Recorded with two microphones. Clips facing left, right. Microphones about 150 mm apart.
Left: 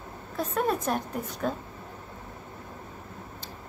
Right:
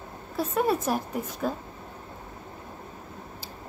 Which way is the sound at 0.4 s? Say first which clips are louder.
Right 2 dB; 5° right (ahead or behind).